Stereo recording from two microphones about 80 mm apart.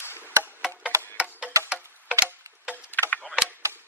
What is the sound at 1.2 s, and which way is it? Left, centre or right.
Music, centre.